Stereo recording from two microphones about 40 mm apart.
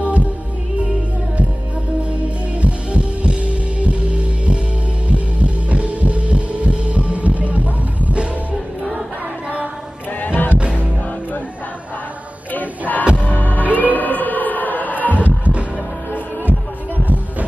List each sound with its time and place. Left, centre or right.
0.0 s music: right
2.0 s heart sounds: right
5.0 s throbbing: right
10.2 s music: left
12.5 s music: left
13.7 s a sound: left
15.1 s music: right